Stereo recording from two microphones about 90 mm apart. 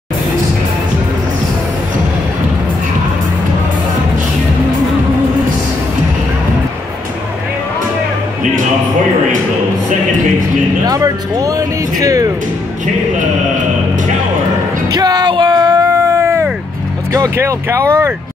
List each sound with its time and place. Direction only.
10.9 s speech: 45° right (ahead or behind)
15.0 s child singing: 50° right (ahead or behind)
15.8 s a sound: 30° right (ahead or behind)
17.4 s speech: 30° right (ahead or behind)